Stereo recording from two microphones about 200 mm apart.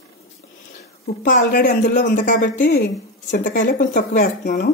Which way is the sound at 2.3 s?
40° left (ahead or behind).